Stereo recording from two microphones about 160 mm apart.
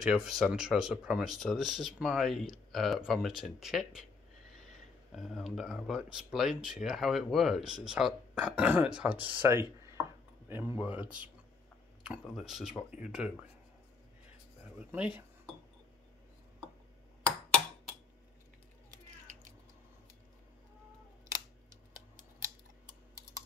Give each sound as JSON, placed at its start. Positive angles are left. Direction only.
{"t": 0.0, "sound": "speech", "side_deg": 0}
{"t": 5.1, "sound": "speech", "side_deg": 0}
{"t": 14.8, "sound": "speech", "side_deg": -10}
{"t": 21.9, "sound": "a sound", "side_deg": -50}